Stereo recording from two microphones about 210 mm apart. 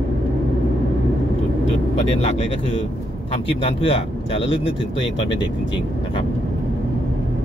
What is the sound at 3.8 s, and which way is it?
Speech, 25° left (ahead or behind).